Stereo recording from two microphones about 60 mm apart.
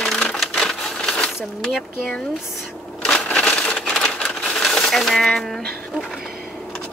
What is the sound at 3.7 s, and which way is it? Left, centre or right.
Typewriter, centre.